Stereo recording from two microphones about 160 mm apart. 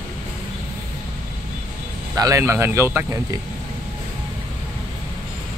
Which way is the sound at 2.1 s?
20° right (ahead or behind).